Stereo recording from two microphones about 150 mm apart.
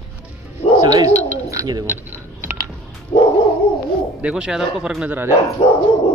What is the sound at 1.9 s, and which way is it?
Typing, 15° right (ahead or behind).